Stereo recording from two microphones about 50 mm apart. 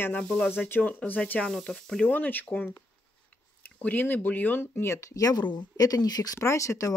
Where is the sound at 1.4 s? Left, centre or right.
Centre.